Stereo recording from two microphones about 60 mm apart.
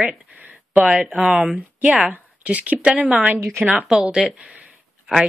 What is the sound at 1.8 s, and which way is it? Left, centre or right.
Speech, right.